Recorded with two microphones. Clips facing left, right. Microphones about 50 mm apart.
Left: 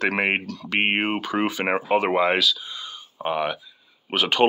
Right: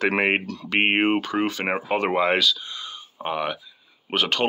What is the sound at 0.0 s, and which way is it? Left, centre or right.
Speech, centre.